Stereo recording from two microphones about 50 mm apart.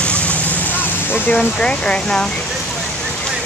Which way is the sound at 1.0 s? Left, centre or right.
Left.